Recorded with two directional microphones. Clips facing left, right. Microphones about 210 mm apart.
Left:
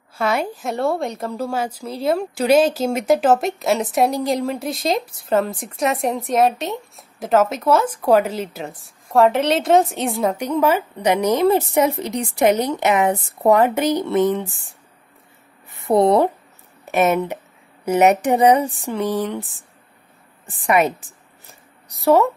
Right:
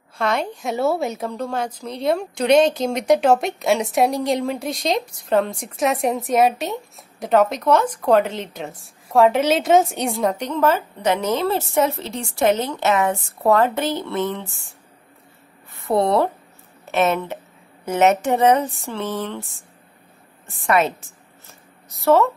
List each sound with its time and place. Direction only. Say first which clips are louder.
0.1 s a woman's voice: left 1 dB; 5° left (ahead or behind)
15.8 s a woman's voice: left 3 dB; 20° left (ahead or behind)
20.6 s a sound: left 1 dB; 15° left (ahead or behind)